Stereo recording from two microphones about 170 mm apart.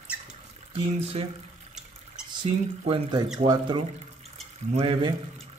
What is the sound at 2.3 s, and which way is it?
Speech, 25° right (ahead or behind).